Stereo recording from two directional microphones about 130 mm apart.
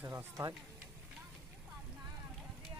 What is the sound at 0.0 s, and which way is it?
Speech, 25° right (ahead or behind).